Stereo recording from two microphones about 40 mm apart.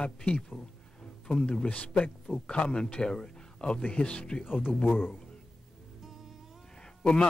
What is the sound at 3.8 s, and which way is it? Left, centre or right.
Speech, left.